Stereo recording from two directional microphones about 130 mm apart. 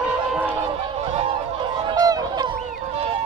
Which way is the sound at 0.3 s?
10° right (ahead or behind).